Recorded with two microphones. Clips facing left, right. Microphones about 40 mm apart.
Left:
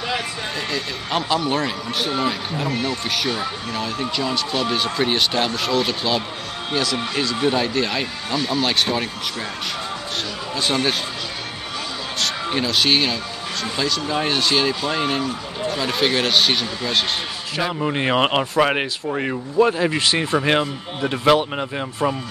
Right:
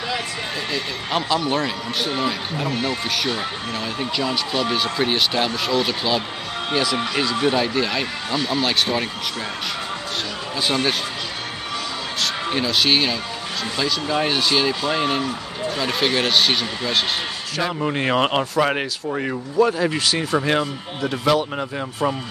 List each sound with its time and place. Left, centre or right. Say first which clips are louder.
0.7 s speech: even; centre
3.7 s speech: left 1 dB; centre
10.6 s speech: even; centre
12.2 s speech: even; centre
20.0 s speech: left 1 dB; left
22.0 s speech: left 1 dB; centre